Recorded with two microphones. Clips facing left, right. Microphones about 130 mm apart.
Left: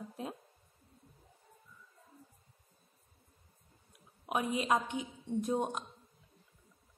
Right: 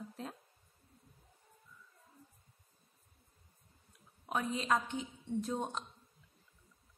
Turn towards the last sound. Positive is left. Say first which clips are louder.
# left 4 dB
turn(degrees=15)  # may be behind; listen again after turning